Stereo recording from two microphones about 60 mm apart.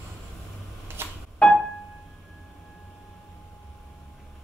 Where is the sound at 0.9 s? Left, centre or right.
Right.